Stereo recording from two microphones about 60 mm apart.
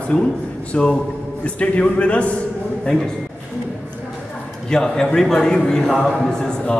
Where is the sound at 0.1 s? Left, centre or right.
Centre.